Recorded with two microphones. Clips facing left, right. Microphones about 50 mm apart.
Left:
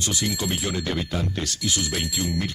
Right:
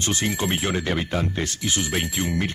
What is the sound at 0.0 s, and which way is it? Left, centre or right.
Speech, right.